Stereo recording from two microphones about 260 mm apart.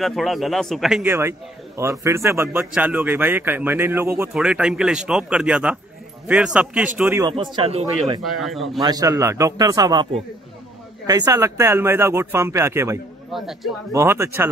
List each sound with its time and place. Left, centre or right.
0.0 s a man's voice: centre
8.2 s a man's voice: centre
8.7 s speech: centre
11.1 s speech: centre